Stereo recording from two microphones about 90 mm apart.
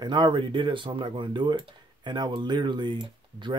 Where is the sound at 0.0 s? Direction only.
55° right (ahead or behind).